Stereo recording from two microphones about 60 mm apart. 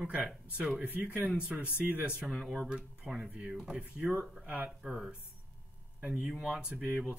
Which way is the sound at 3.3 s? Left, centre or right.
Right.